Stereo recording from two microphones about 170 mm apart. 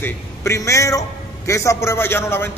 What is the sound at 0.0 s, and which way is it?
A man's voice, 15° left (ahead or behind).